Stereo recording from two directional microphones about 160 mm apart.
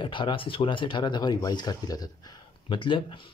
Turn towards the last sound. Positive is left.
turn(degrees=30)  # may be behind; listen again after turning